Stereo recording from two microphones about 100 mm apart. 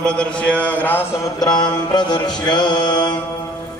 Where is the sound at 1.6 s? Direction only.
45° left (ahead or behind).